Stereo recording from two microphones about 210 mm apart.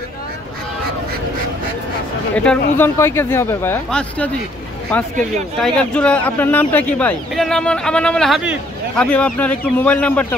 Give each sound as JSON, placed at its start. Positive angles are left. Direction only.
{"t": 2.3, "sound": "speech", "side_deg": 5}